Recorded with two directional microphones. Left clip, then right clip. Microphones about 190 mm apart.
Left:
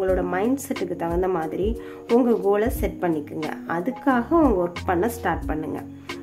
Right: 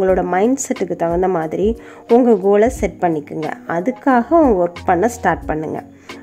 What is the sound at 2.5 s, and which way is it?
Speech, 35° right (ahead or behind).